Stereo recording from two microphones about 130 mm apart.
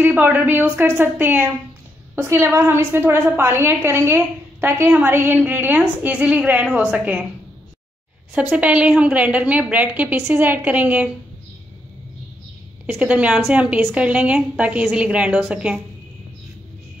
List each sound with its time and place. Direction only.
0.0 s a woman's voice: 15° right (ahead or behind)
8.4 s a woman's voice: 10° right (ahead or behind)
12.8 s a woman's voice: 10° right (ahead or behind)